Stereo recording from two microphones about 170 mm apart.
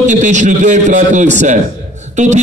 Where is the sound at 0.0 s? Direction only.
45° right (ahead or behind).